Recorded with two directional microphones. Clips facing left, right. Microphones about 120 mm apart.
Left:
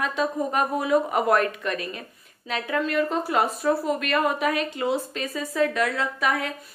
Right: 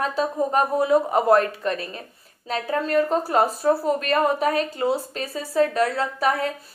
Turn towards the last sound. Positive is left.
turn(degrees=-35)  # may be behind; listen again after turning